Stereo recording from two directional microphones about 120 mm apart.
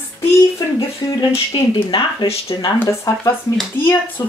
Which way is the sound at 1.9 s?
50° left (ahead or behind).